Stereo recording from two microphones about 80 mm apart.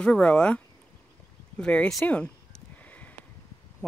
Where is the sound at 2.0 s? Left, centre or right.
Centre.